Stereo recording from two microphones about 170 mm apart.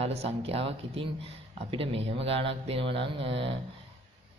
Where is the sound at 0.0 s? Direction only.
35° right (ahead or behind).